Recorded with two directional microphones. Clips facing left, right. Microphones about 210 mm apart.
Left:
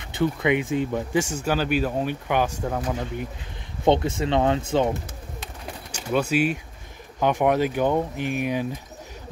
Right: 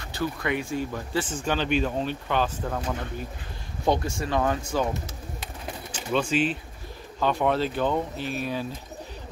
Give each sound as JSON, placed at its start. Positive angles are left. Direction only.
{"t": 0.0, "sound": "speech", "side_deg": 20}
{"t": 1.3, "sound": "speech", "side_deg": 5}
{"t": 6.1, "sound": "speech", "side_deg": 10}